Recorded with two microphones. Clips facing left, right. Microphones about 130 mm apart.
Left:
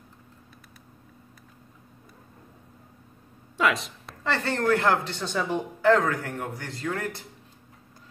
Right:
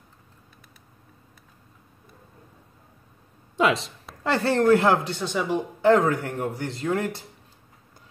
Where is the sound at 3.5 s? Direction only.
25° right (ahead or behind).